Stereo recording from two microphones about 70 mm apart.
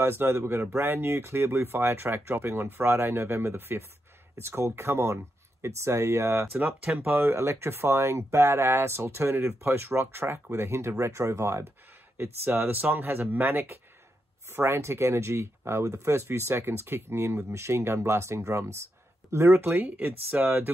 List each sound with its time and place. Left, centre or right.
0.0 s speech: right
14.5 s speech: right